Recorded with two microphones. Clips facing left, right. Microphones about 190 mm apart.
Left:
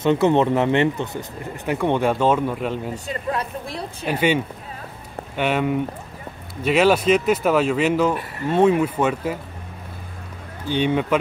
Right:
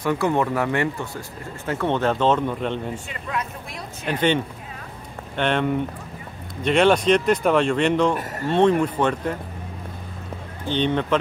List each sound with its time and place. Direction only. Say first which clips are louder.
0.0 s speech: left 4 dB; 20° left (ahead or behind); by 2.9 s 5° left (ahead or behind)
3.1 s speech: left 4 dB; 35° left (ahead or behind)
4.0 s speech: left 1 dB; 10° left (ahead or behind)
10.7 s speech: left 1 dB; 10° left (ahead or behind)